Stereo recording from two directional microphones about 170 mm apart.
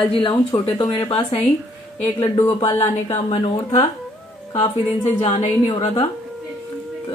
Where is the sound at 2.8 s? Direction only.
40° left (ahead or behind).